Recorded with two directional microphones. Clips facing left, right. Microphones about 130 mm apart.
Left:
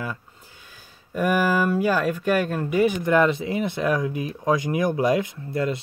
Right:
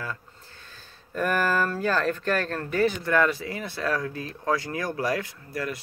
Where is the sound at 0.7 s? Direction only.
10° left (ahead or behind).